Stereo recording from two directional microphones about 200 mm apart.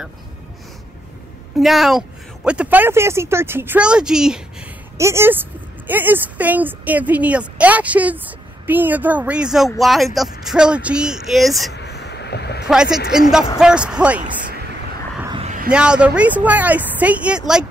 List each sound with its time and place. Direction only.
1.6 s speech: centre (ahead or behind)
4.9 s a woman's voice: 15° right (ahead or behind)
11.7 s vehicle: 55° left (ahead or behind)
12.6 s speech: 5° right (ahead or behind)
15.2 s a sound: 25° right (ahead or behind)
15.7 s a woman's voice: 5° right (ahead or behind)